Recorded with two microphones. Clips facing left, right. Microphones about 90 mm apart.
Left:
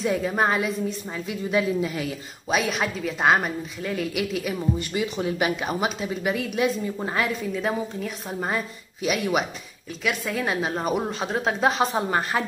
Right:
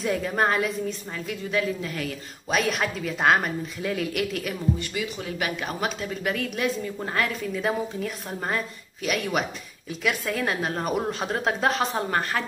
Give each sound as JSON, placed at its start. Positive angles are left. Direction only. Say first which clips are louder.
{"t": 0.0, "sound": "a woman's voice", "louder": "left 1 dB", "side_deg": 5}
{"t": 4.7, "sound": "a woman's voice", "louder": "left 4 dB", "side_deg": 25}